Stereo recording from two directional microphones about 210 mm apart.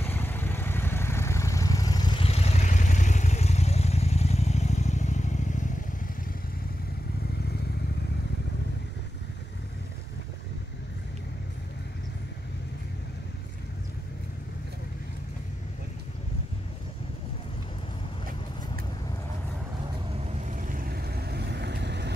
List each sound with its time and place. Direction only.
0.0 s vehicle: 10° left (ahead or behind); by 5.7 s 35° left (ahead or behind)
20.2 s vehicle: 35° right (ahead or behind); by 22.1 s 55° right (ahead or behind)